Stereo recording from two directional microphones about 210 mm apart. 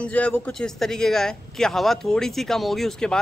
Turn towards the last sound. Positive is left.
turn(degrees=5)  # may be behind; listen again after turning